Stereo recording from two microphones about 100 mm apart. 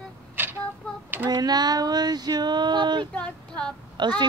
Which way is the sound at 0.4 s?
20° right (ahead or behind).